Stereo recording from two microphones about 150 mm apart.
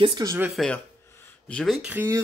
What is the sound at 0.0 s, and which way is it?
Speech, 25° right (ahead or behind).